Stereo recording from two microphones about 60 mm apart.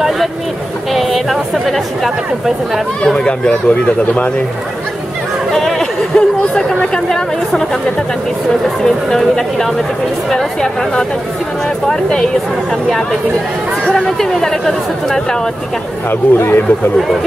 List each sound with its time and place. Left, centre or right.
0.9 s speech: centre
3.0 s speech: centre
5.5 s speech: centre
8.6 s speech: centre
13.8 s speech: centre
16.1 s speech: left